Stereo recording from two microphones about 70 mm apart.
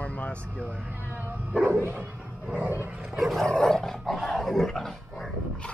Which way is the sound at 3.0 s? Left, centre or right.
Centre.